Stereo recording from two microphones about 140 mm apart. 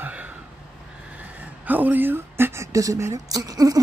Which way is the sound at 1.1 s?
10° right (ahead or behind).